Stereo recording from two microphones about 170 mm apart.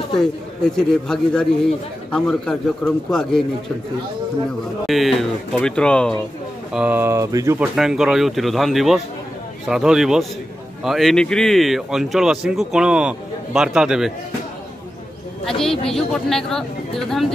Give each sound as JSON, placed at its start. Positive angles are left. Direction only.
{"t": 0.2, "sound": "speech", "side_deg": 5}
{"t": 4.8, "sound": "speech", "side_deg": 0}
{"t": 6.7, "sound": "speech", "side_deg": -10}
{"t": 7.5, "sound": "speech", "side_deg": -5}
{"t": 15.4, "sound": "speech", "side_deg": 5}